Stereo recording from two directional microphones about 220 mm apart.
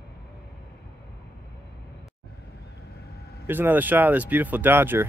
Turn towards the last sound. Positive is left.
turn(degrees=-10)  # may be behind; listen again after turning